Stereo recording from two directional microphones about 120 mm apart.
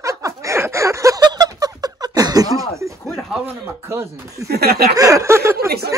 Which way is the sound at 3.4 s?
20° right (ahead or behind).